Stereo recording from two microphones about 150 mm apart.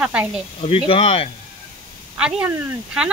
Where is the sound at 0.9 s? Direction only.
40° left (ahead or behind).